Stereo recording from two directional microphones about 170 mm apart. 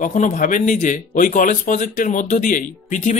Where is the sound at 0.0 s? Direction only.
50° left (ahead or behind).